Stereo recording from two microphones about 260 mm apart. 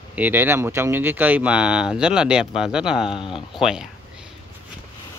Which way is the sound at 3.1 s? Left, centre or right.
Centre.